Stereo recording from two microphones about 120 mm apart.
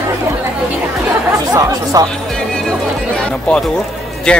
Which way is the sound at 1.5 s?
30° right (ahead or behind).